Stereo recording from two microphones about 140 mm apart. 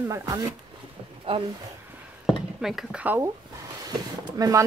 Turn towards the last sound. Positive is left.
turn(degrees=-25)  # may be behind; listen again after turning